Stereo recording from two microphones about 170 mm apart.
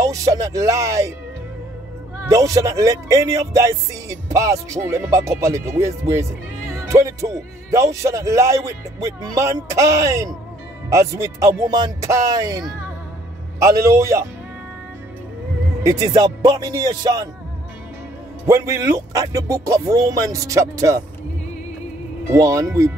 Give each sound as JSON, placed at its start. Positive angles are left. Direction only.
{"t": 0.0, "sound": "speech", "side_deg": -20}
{"t": 2.2, "sound": "speech", "side_deg": -20}
{"t": 15.8, "sound": "speech", "side_deg": -20}
{"t": 18.5, "sound": "speech", "side_deg": -20}
{"t": 22.3, "sound": "speech", "side_deg": -20}